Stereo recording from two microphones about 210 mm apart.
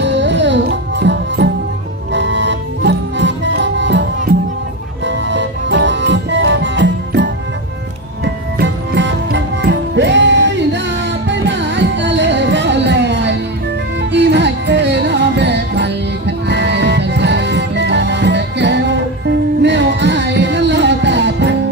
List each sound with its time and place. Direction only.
0.0 s music: 60° right (ahead or behind)
5.0 s music: 60° right (ahead or behind)
8.5 s music: 60° right (ahead or behind)